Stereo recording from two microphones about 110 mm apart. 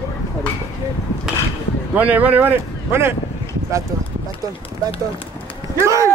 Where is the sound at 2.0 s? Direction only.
15° right (ahead or behind).